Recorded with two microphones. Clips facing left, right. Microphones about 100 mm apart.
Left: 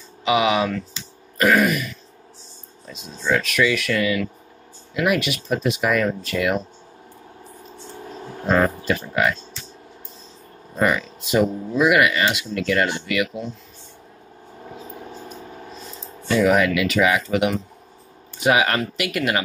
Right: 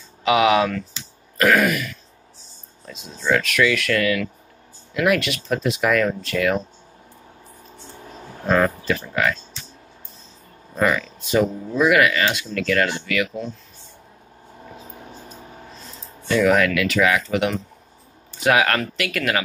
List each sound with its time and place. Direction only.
0.3 s speech: centre (ahead or behind)
2.9 s speech: centre (ahead or behind)
8.9 s speech: 15° left (ahead or behind)
10.8 s speech: 10° left (ahead or behind)
16.3 s speech: 10° left (ahead or behind)